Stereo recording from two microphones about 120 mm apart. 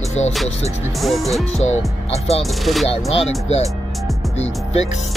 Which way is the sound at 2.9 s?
50° left (ahead or behind).